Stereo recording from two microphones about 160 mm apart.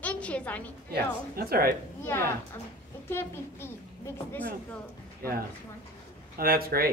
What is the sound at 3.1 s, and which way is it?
A woman's voice, 15° left (ahead or behind).